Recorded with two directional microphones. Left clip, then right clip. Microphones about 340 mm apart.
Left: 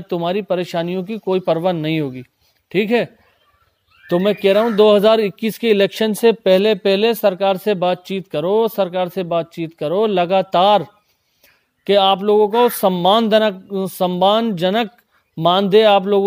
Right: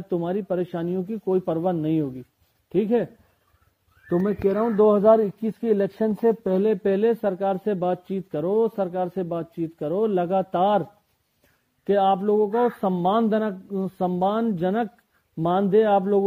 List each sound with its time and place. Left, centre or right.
0.1 s speech: left
4.1 s speech: left
11.8 s speech: left